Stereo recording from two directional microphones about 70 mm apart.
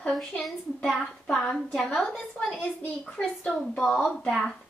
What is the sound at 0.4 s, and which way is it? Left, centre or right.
A woman's voice, centre.